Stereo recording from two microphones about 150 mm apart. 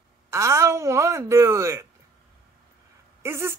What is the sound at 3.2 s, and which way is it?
Speech, 15° right (ahead or behind).